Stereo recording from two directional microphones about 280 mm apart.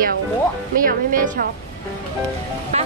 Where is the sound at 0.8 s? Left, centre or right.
Right.